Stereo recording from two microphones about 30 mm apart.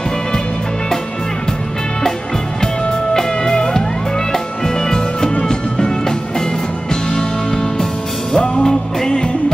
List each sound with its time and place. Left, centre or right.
2.6 s music: left